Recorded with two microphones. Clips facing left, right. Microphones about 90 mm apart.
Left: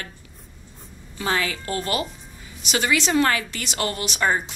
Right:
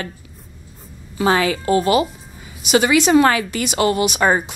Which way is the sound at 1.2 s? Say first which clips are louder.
Right 8 dB; 90° right.